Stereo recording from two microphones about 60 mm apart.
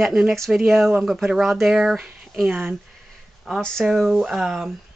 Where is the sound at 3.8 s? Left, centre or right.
Centre.